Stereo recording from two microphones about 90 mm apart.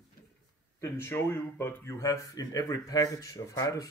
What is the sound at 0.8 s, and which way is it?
Speech, 25° left (ahead or behind).